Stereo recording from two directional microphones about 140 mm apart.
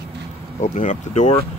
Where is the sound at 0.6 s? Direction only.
60° left (ahead or behind).